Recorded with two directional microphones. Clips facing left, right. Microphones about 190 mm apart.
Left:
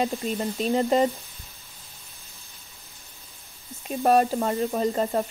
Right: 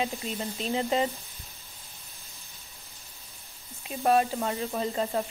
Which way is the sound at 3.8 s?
45° left (ahead or behind).